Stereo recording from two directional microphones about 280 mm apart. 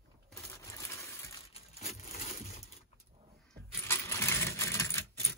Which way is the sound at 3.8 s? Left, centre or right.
Centre.